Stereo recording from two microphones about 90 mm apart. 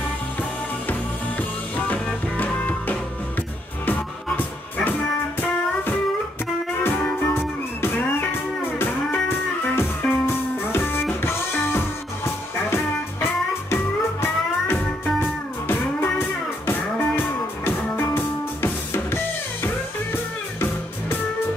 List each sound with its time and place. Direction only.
1.8 s music: 20° left (ahead or behind)
6.8 s music: 20° left (ahead or behind)
9.8 s music: 25° left (ahead or behind)